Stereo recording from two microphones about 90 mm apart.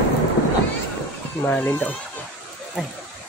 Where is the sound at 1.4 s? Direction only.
20° left (ahead or behind).